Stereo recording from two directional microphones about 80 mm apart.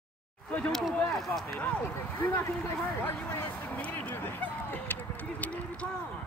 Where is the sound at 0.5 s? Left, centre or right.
Centre.